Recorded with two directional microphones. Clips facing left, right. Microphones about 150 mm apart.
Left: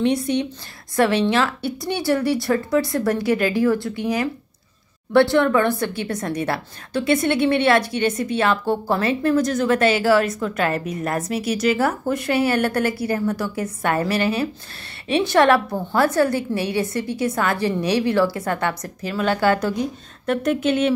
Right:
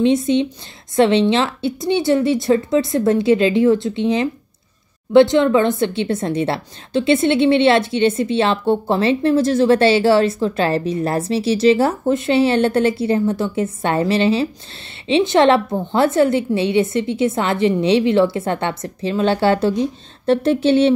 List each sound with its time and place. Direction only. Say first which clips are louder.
0.0 s a woman's voice: right 5 dB; 20° right (ahead or behind)